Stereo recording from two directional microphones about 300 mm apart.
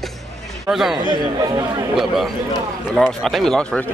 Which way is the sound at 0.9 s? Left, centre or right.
Centre.